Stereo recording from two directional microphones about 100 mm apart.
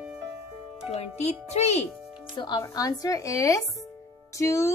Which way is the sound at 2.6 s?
35° left (ahead or behind).